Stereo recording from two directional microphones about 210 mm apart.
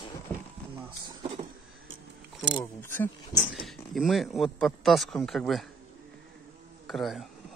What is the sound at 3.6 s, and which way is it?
Speech, centre (ahead or behind).